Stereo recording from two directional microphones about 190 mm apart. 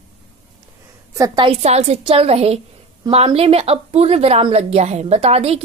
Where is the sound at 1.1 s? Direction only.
20° right (ahead or behind).